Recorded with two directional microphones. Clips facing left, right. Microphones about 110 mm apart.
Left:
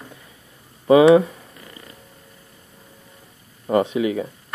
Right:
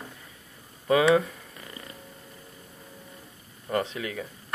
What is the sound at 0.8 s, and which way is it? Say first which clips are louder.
Speech: left 9 dB; 20° left (ahead or behind).